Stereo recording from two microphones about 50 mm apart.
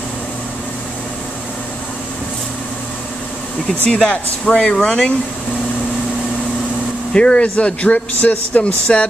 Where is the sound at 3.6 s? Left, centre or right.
Centre.